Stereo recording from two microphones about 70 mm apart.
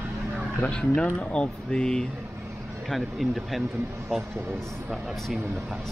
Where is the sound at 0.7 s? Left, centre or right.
Centre.